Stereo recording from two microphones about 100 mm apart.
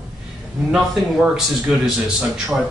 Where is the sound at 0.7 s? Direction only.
5° right (ahead or behind).